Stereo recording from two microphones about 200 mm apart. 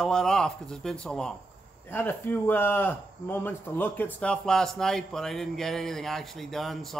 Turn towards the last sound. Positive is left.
turn(degrees=0)  # may be behind; listen again after turning